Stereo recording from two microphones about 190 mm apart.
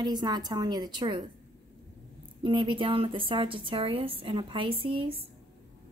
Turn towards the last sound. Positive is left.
turn(degrees=-25)  # may be behind; listen again after turning